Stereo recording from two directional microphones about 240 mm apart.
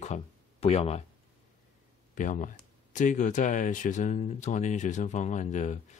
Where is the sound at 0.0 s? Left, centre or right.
Left.